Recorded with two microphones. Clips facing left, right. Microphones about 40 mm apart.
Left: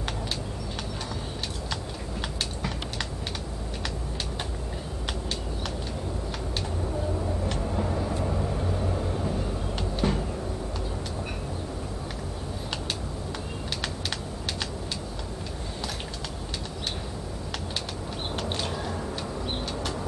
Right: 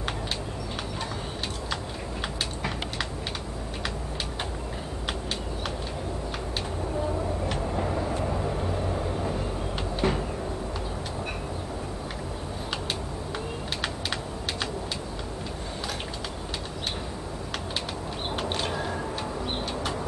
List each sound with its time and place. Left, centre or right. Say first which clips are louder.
7.4 s vehicle: right 1 dB; centre
9.9 s cupboard open or close: right 1 dB; centre
18.4 s a sound: right 3 dB; centre